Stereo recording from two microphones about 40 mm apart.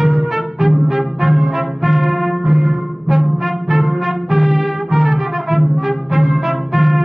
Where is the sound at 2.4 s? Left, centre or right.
Centre.